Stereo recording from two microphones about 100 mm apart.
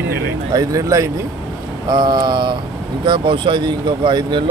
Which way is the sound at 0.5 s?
35° right (ahead or behind).